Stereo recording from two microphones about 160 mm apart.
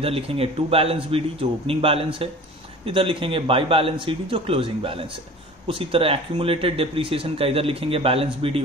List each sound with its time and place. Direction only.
0.0 s speech: 35° right (ahead or behind)